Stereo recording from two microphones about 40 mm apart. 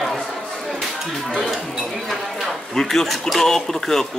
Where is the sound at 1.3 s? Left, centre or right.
Centre.